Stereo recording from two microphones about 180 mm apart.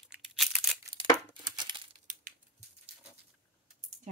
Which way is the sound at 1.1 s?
25° right (ahead or behind).